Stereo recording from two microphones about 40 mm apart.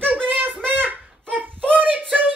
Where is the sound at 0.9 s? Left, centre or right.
Right.